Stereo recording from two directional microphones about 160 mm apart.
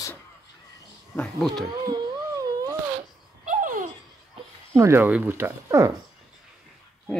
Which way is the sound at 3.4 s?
55° right (ahead or behind).